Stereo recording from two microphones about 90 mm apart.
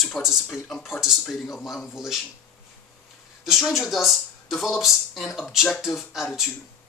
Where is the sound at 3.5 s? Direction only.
Centre (ahead or behind).